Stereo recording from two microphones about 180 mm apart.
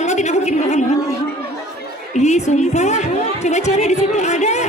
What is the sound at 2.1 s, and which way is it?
A woman's voice, 40° left (ahead or behind).